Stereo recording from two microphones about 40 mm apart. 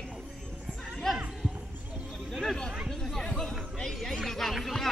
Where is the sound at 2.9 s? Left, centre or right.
Centre.